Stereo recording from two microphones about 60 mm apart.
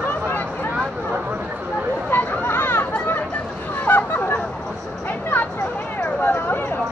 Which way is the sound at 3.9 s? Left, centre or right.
Left.